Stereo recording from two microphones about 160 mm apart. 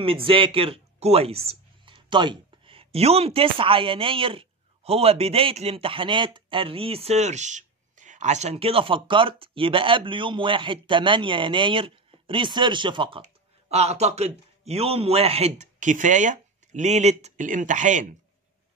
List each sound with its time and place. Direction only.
0.0 s speech: 35° right (ahead or behind)
13.2 s speech: 40° right (ahead or behind)